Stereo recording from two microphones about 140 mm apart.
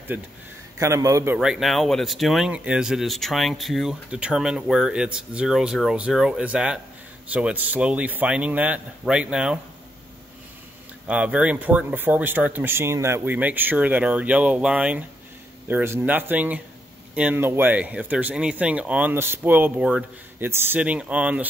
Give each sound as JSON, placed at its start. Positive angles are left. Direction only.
{"t": 0.1, "sound": "a man's voice", "side_deg": -10}
{"t": 1.4, "sound": "speech", "side_deg": 0}
{"t": 11.1, "sound": "speech", "side_deg": -10}